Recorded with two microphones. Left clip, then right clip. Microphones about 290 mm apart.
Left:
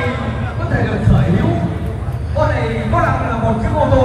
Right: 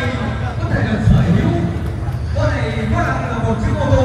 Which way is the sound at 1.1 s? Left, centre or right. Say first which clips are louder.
Left 1 dB; centre.